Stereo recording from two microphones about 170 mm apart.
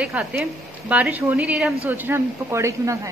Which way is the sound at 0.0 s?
5° right (ahead or behind).